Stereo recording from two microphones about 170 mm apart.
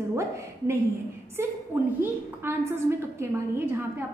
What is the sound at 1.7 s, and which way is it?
A woman's voice, 10° right (ahead or behind).